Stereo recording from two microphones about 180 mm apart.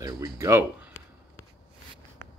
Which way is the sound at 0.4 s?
15° right (ahead or behind).